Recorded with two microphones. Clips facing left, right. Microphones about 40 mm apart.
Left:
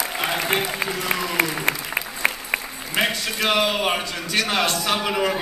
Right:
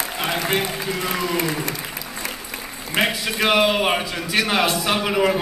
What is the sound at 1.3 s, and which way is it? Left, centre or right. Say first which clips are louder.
Speech: left 1 dB; left.